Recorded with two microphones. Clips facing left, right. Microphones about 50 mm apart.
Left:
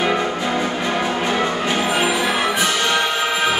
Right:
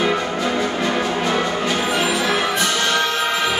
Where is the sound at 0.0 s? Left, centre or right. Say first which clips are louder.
Even; centre.